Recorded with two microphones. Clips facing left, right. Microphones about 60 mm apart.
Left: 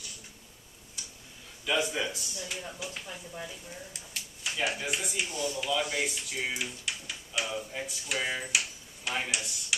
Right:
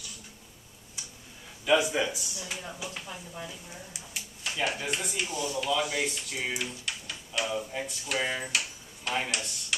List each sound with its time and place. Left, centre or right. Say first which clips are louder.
1.7 s a man's voice: right 5 dB; centre
4.4 s speech: right 1 dB; centre
5.2 s speech: even; centre
5.6 s speech: right 3 dB; centre
8.5 s tick-tock: even; centre
9.3 s speech: even; centre